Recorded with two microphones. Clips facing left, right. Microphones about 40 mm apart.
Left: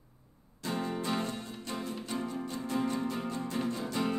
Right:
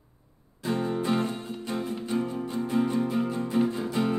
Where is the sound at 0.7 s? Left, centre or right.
Centre.